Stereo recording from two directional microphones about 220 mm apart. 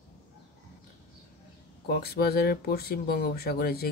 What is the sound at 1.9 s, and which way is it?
Speech, 45° left (ahead or behind).